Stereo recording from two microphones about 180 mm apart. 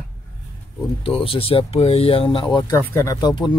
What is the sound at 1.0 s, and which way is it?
Speech, 30° left (ahead or behind).